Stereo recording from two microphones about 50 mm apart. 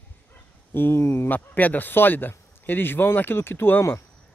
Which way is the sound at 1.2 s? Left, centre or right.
Left.